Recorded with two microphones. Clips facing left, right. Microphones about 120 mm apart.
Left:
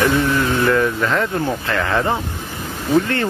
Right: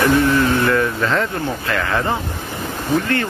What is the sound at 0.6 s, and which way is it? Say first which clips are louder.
Speech: left 1 dB; 10° left (ahead or behind).